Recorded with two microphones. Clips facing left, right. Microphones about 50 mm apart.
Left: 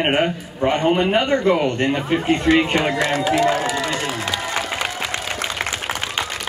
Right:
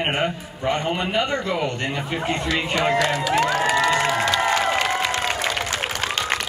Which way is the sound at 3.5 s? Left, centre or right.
Right.